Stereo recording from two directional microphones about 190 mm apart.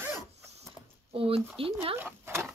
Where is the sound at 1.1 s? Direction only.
30° right (ahead or behind).